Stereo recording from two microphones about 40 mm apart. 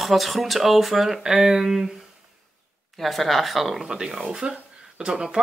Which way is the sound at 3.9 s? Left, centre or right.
Centre.